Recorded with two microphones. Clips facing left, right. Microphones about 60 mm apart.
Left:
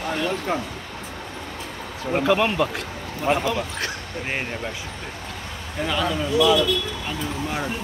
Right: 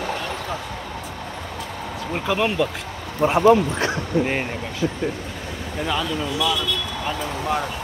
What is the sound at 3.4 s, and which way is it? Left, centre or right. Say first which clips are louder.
Speech: right 10 dB; right.